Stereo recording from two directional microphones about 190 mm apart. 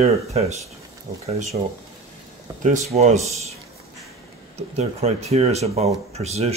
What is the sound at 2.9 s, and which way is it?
Speech, 35° right (ahead or behind).